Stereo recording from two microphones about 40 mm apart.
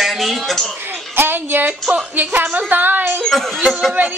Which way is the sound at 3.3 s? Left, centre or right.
Centre.